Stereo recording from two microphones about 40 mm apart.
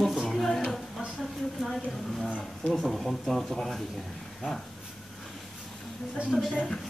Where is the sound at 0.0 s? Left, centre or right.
Centre.